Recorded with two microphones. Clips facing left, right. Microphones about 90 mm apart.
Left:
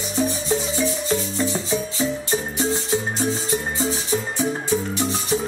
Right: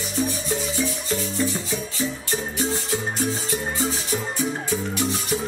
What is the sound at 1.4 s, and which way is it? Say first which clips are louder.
Music: left 3 dB; 25° left (ahead or behind).